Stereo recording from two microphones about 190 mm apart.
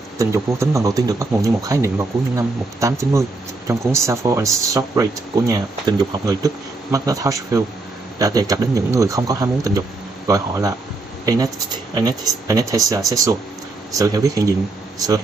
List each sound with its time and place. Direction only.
0.2 s speech: 15° right (ahead or behind)